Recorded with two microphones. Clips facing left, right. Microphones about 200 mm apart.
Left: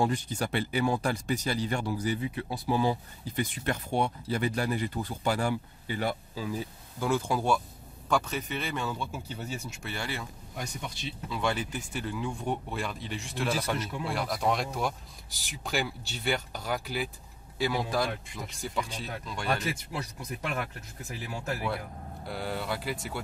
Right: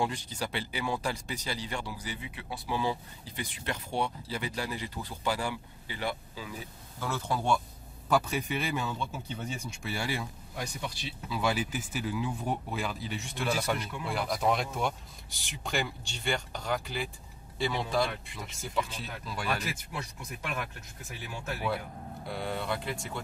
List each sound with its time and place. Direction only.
0.0 s speech: 50° left (ahead or behind)
7.0 s speech: 10° left (ahead or behind)
8.1 s a man's voice: 10° right (ahead or behind)
8.9 s speech: 5° left (ahead or behind)
9.8 s a man's voice: 10° right (ahead or behind)
11.2 s speech: 5° right (ahead or behind)
19.4 s speech: 40° left (ahead or behind)
22.2 s speech: centre (ahead or behind)